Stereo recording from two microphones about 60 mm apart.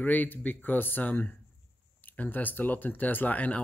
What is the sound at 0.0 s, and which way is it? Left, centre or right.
Speech, left.